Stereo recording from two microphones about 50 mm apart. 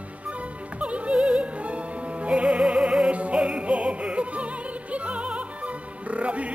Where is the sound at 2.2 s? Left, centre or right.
Right.